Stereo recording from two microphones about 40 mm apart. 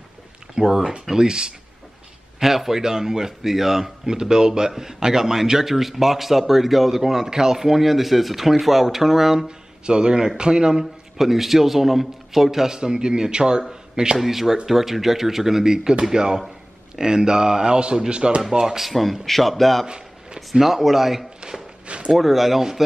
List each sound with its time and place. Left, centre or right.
0.6 s speech: centre
2.4 s speech: centre
9.8 s speech: right
14.1 s speech: centre
18.8 s speech: centre
21.8 s a sound: right
22.1 s speech: centre